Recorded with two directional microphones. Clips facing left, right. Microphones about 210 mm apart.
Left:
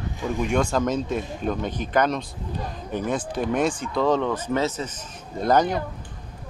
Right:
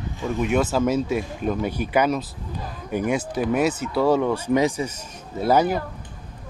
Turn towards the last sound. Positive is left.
turn(degrees=-5)  # may be behind; listen again after turning